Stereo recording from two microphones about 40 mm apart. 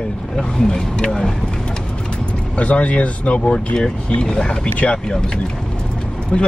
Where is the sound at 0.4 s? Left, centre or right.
Centre.